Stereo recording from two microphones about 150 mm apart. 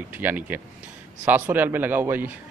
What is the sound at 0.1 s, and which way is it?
A man's voice, 15° right (ahead or behind).